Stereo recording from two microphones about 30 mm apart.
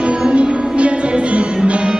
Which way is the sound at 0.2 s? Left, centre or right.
Right.